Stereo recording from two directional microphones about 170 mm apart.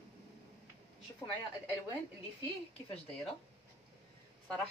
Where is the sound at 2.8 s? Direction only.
30° left (ahead or behind).